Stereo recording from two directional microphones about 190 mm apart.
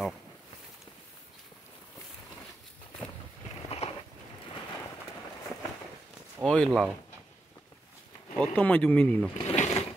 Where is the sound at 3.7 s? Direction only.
30° left (ahead or behind).